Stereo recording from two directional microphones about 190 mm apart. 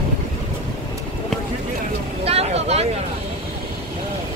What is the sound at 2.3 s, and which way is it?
Vehicle, 35° right (ahead or behind).